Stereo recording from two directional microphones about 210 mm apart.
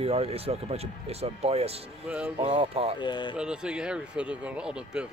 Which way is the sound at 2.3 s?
25° right (ahead or behind).